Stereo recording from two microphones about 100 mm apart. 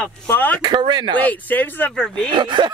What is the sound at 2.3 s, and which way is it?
Speech, 50° right (ahead or behind).